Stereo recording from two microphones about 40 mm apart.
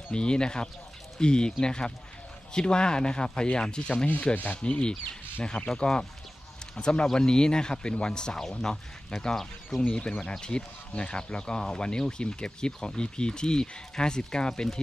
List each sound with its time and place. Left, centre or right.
0.1 s speech: left
9.8 s speech: left